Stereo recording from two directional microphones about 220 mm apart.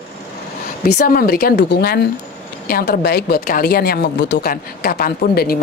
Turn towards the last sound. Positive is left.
turn(degrees=45)  # may be behind; listen again after turning